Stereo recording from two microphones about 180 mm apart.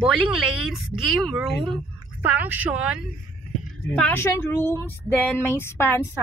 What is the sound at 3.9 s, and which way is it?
Speech, 10° left (ahead or behind).